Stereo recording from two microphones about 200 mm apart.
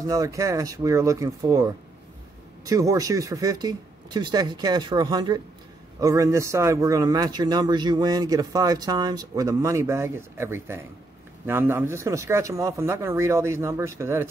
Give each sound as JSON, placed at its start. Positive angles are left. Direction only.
{"t": 0.0, "sound": "a man's voice", "side_deg": -15}